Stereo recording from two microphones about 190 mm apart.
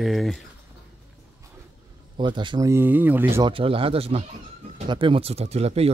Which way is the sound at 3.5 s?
30° right (ahead or behind).